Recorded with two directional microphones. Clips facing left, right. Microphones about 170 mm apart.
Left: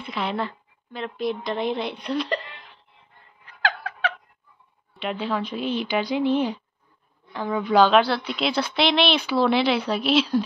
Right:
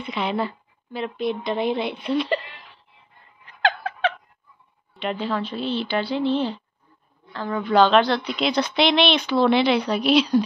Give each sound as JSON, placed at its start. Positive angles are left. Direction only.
{"t": 0.0, "sound": "a woman's voice", "side_deg": 0}
{"t": 3.4, "sound": "a sound", "side_deg": -25}
{"t": 4.9, "sound": "a woman's voice", "side_deg": 5}